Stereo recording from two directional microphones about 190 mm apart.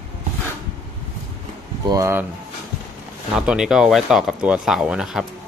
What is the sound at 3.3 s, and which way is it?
Speech, 5° right (ahead or behind).